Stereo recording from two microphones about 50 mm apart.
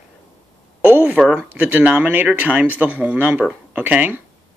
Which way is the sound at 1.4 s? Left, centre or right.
Right.